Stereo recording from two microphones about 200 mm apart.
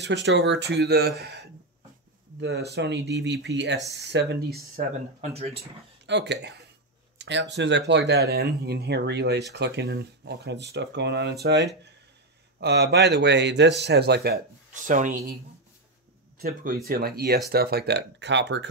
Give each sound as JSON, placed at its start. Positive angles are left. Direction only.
{"t": 0.0, "sound": "speech", "side_deg": -60}
{"t": 5.2, "sound": "speech", "side_deg": -30}
{"t": 6.0, "sound": "speech", "side_deg": -60}
{"t": 16.3, "sound": "speech", "side_deg": -50}